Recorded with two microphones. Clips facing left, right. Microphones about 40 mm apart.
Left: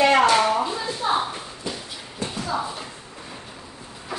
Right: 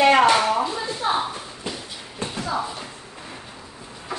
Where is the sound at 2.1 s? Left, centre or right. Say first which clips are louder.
Right 1 dB; centre.